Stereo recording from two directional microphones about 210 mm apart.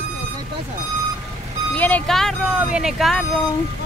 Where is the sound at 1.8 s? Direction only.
5° left (ahead or behind).